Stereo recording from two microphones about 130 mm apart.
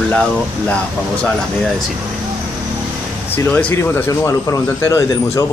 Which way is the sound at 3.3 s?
20° left (ahead or behind).